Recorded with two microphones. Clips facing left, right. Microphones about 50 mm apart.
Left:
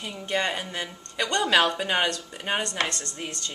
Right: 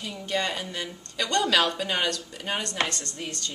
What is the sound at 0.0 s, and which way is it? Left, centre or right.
A woman's voice, left.